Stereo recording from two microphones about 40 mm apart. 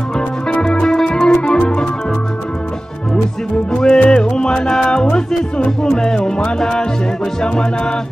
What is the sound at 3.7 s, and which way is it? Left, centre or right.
Music, left.